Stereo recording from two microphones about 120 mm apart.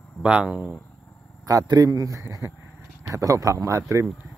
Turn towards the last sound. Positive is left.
turn(degrees=-5)  # may be behind; listen again after turning